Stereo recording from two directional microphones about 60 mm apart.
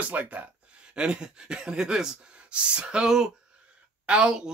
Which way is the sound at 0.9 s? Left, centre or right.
Centre.